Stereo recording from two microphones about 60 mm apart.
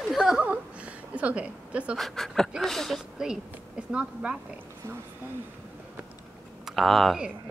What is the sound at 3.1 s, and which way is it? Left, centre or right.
Speech, centre.